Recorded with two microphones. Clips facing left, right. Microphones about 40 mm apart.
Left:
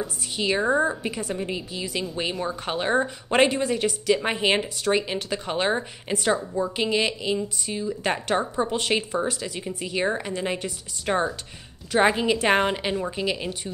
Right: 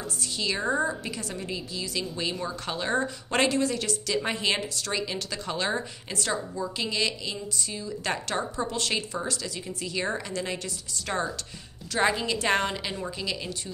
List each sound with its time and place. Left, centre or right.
0.0 s speech: centre